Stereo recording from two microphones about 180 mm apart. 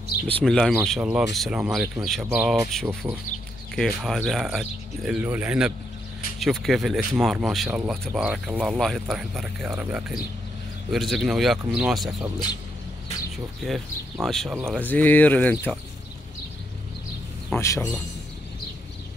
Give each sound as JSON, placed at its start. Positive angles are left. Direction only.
{"t": 0.4, "sound": "speech", "side_deg": 5}
{"t": 2.3, "sound": "speech", "side_deg": -10}
{"t": 2.7, "sound": "speech", "side_deg": 0}
{"t": 14.2, "sound": "speech", "side_deg": 0}
{"t": 14.9, "sound": "speech", "side_deg": 10}
{"t": 17.5, "sound": "speech", "side_deg": 15}